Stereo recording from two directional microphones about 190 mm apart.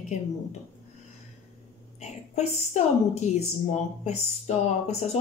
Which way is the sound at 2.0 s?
35° left (ahead or behind).